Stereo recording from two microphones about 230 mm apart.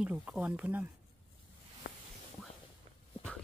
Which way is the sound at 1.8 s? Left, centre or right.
Left.